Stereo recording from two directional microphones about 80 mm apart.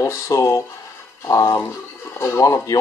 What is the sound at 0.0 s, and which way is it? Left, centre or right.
Speech, left.